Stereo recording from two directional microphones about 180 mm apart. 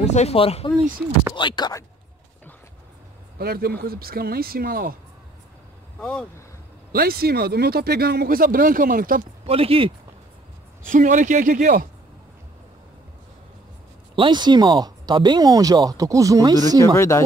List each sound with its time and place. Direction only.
0.0 s speech: 40° left (ahead or behind); by 1.9 s 20° left (ahead or behind)
3.3 s speech: 60° right (ahead or behind)
5.9 s speech: 5° left (ahead or behind)
6.9 s speech: 55° right (ahead or behind)
9.5 s speech: 30° right (ahead or behind)
10.9 s a man's voice: 45° right (ahead or behind)
14.1 s speech: 25° right (ahead or behind)
16.9 s speech: 15° left (ahead or behind)